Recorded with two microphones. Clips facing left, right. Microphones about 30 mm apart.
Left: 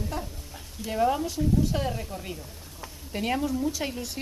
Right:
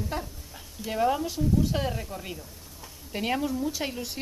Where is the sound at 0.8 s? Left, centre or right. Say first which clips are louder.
Left 1 dB; centre.